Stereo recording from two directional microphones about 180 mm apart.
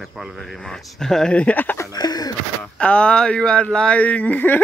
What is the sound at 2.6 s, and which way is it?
Speech, 5° left (ahead or behind).